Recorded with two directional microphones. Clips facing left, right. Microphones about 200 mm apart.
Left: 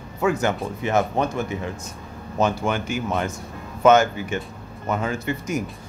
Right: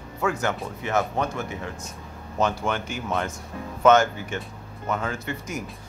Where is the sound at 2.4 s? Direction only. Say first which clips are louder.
Left 3 dB; 10° left (ahead or behind).